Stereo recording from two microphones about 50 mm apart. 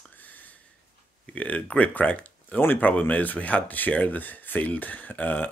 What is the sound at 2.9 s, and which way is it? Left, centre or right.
Speech, left.